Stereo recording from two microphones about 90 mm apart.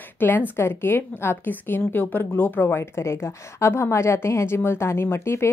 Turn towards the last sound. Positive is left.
turn(degrees=30)  # may be behind; listen again after turning